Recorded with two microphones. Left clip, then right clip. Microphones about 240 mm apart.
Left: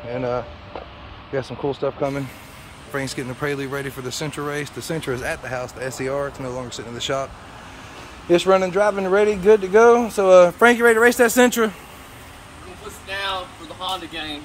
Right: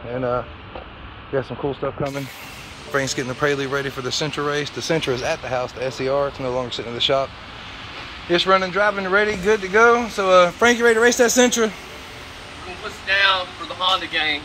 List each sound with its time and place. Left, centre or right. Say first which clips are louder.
0.1 s speech: right 1 dB; centre
2.9 s speech: right 5 dB; centre
8.3 s speech: left 1 dB; left; by 11.7 s centre
13.0 s speech: right 9 dB; centre